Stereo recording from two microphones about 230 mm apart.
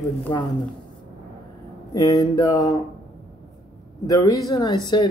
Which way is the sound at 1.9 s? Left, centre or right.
Centre.